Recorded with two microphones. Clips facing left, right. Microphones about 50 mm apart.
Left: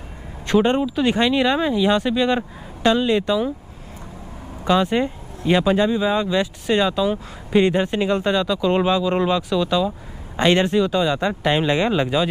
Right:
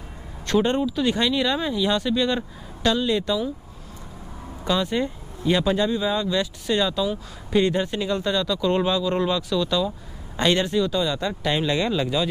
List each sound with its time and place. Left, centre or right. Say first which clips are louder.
0.5 s speech: left 3 dB; left
4.6 s speech: left 5 dB; left